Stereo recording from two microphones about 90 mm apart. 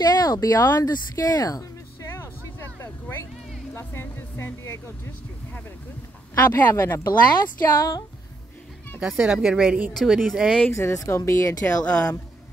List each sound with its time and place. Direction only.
0.0 s speech: 45° left (ahead or behind)
2.0 s a sound: 25° left (ahead or behind)
3.7 s speech: 30° left (ahead or behind)
6.4 s speech: 25° left (ahead or behind)
7.1 s speech: 45° left (ahead or behind)
9.0 s speech: 5° right (ahead or behind)
10.7 s speech: 35° left (ahead or behind)
11.7 s speech: 15° left (ahead or behind)